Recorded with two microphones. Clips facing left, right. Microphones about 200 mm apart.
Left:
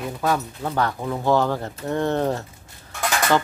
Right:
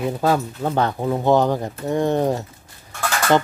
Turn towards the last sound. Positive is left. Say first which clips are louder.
# even
turn(degrees=15)  # may be behind; listen again after turning